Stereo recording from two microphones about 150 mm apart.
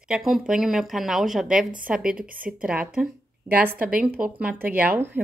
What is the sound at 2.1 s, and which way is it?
Speech, 70° right (ahead or behind).